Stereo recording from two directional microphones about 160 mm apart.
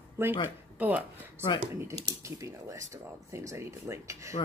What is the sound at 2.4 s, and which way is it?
Speech, 20° right (ahead or behind).